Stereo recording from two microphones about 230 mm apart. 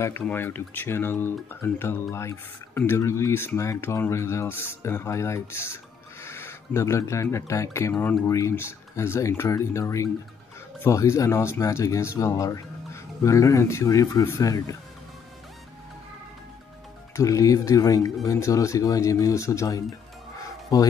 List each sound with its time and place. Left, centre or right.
0.0 s speech: centre
17.1 s speech: centre